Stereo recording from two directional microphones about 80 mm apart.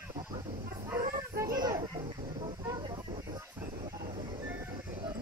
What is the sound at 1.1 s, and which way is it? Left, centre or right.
Children playing, right.